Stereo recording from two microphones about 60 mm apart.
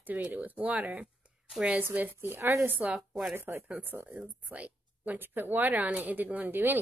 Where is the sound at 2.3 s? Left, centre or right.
Right.